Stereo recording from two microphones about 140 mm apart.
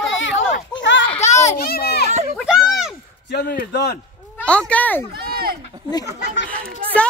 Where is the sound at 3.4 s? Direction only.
90° left.